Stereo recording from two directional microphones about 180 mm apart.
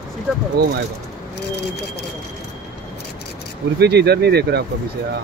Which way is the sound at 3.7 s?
65° right (ahead or behind).